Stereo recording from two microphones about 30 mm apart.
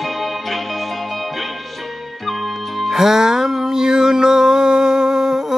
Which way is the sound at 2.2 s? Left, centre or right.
Centre.